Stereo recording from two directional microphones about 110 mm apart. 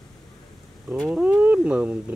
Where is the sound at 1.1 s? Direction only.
10° right (ahead or behind).